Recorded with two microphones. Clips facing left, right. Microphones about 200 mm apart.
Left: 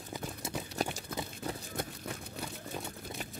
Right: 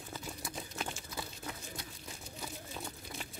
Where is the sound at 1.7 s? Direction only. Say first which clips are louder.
Left 9 dB; 55° left (ahead or behind).